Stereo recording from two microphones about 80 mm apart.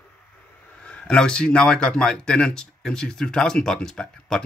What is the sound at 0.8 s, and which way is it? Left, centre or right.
Speech, centre.